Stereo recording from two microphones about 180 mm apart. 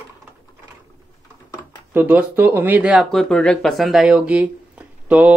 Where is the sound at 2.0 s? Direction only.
10° right (ahead or behind).